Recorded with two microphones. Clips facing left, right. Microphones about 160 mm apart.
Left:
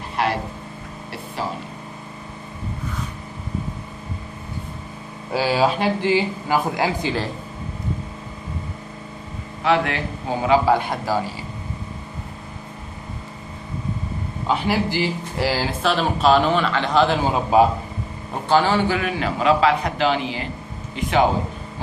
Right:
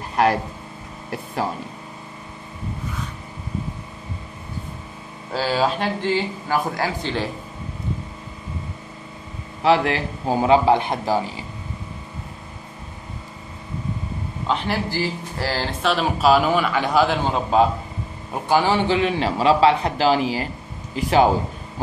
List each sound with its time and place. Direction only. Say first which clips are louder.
0.1 s a sound: right 4 dB; 40° right (ahead or behind)
5.3 s speech: left 2 dB; 10° left (ahead or behind)
9.6 s a man's voice: right 2 dB; 35° right (ahead or behind)
10.6 s a man's voice: right 1 dB; 20° right (ahead or behind)
14.5 s speech: left 3 dB; 15° left (ahead or behind); by 17.2 s 5° right (ahead or behind)
17.2 s speech: left 2 dB; 5° left (ahead or behind)
18.5 s a man's voice: even; 15° right (ahead or behind); by 21.3 s 35° right (ahead or behind)